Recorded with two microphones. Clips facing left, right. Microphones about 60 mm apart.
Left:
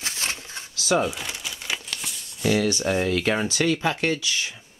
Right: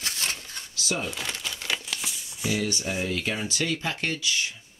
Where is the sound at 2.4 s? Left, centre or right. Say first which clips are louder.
Left 6 dB; left.